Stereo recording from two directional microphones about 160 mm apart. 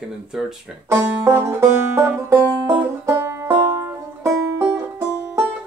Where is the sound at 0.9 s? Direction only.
15° right (ahead or behind).